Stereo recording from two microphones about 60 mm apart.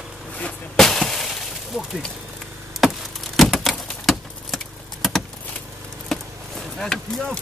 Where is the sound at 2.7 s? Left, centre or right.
Centre.